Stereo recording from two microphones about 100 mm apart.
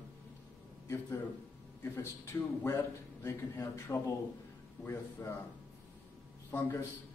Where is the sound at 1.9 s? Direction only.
30° left (ahead or behind).